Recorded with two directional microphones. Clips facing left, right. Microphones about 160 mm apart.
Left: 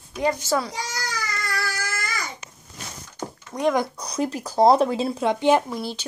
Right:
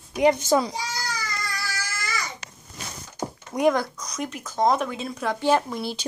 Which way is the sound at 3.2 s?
10° right (ahead or behind).